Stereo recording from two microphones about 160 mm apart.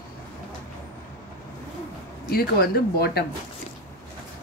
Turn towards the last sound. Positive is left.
turn(degrees=75)  # may be behind; listen again after turning